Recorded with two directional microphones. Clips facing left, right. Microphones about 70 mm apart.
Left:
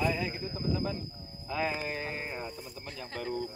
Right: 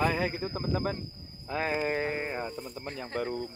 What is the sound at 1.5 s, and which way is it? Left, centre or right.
Speech, right.